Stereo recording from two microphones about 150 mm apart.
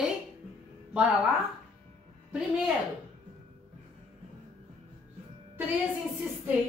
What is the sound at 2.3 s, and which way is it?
Speech, 10° right (ahead or behind).